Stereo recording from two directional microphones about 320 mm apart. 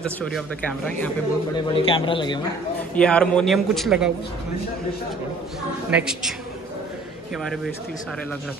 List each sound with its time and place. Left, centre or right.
0.0 s a man's voice: centre
1.7 s speech: centre
2.9 s a man's voice: centre
5.9 s a man's voice: centre